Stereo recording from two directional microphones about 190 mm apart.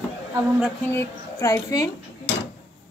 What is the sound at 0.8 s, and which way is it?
Speech, 15° left (ahead or behind).